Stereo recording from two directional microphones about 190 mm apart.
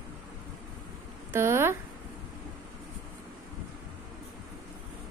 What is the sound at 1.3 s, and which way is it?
Speech, 15° right (ahead or behind).